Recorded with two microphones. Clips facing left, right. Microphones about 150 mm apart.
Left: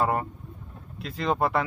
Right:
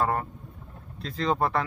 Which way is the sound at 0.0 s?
15° left (ahead or behind).